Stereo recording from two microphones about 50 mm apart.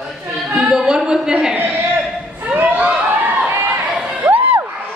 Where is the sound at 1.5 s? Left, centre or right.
Right.